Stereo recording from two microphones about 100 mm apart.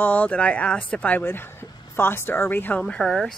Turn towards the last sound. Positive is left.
turn(degrees=5)  # may be behind; listen again after turning